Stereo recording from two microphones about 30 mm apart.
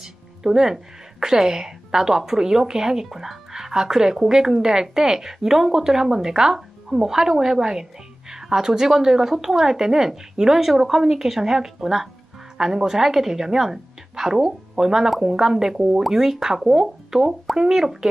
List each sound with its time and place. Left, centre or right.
0.0 s music: centre
1.2 s a woman's voice: right